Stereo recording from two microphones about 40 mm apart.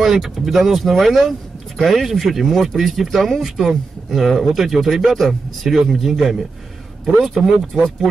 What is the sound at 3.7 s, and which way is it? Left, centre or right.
Speech, centre.